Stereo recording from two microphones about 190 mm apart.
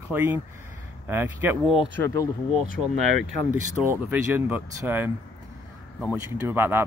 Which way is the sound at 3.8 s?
15° right (ahead or behind).